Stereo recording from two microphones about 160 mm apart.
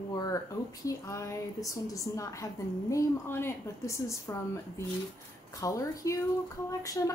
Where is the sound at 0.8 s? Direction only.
20° left (ahead or behind).